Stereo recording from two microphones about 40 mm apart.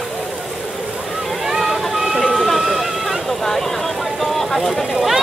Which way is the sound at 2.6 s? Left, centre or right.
Centre.